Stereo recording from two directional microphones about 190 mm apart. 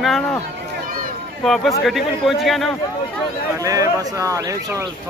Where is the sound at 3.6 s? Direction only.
20° right (ahead or behind).